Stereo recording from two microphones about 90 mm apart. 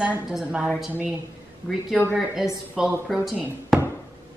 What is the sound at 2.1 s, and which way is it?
Speech, 5° right (ahead or behind).